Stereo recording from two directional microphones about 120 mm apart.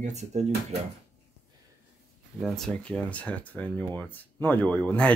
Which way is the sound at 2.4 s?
5° left (ahead or behind).